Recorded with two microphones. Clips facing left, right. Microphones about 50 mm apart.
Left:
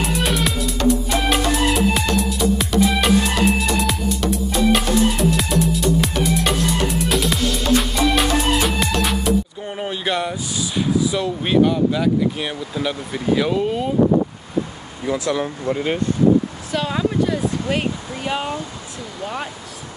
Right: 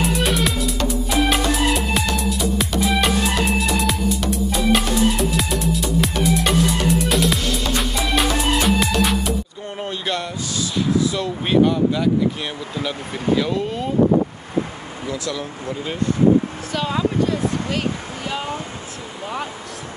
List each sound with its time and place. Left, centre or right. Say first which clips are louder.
0.0 s music: right 1 dB; centre
9.8 s a sound: left 3 dB; centre
11.1 s speech: left 1 dB; centre
15.0 s speech: left 6 dB; left
16.7 s speech: left 1 dB; centre